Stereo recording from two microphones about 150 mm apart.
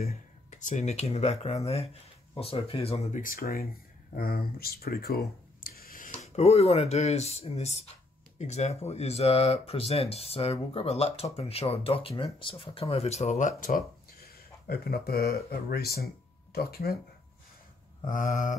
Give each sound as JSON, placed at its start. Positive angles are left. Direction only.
{"t": 0.0, "sound": "speech", "side_deg": 50}
{"t": 3.2, "sound": "speech", "side_deg": 70}
{"t": 6.2, "sound": "speech", "side_deg": 45}
{"t": 18.0, "sound": "a sound", "side_deg": 60}